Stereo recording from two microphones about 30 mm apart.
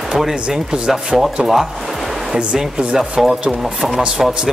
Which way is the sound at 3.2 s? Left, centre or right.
Centre.